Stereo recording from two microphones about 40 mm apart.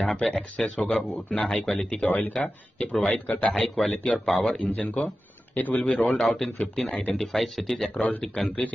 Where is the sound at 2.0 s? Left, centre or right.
Left.